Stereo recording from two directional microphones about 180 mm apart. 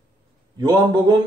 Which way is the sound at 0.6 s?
25° right (ahead or behind).